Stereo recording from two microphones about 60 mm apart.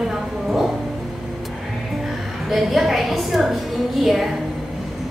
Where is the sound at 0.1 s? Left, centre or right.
Centre.